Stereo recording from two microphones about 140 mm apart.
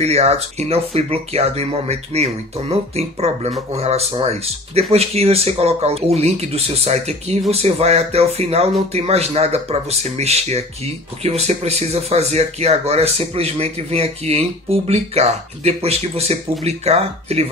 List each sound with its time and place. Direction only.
0.0 s speech: 45° right (ahead or behind)